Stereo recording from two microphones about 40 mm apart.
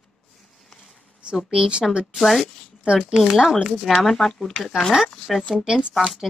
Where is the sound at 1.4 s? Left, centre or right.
Right.